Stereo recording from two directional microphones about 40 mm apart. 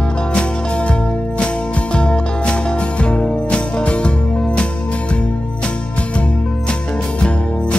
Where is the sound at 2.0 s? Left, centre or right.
Left.